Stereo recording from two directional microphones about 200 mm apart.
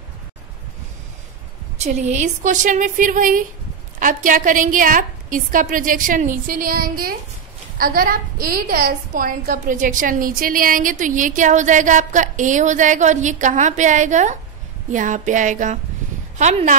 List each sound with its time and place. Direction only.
1.8 s a woman's voice: 35° right (ahead or behind)